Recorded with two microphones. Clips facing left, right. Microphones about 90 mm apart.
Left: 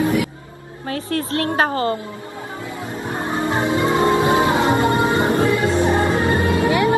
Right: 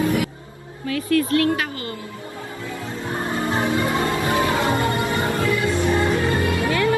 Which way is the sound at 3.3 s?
20° left (ahead or behind).